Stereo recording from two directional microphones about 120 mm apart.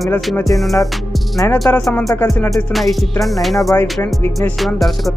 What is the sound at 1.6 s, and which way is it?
Speech, 15° left (ahead or behind).